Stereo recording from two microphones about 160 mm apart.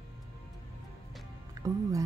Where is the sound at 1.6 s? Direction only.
20° right (ahead or behind).